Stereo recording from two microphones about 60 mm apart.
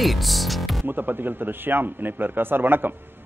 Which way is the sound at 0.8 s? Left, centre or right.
Right.